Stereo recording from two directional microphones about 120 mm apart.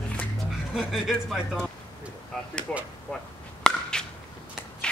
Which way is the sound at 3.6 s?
5° left (ahead or behind).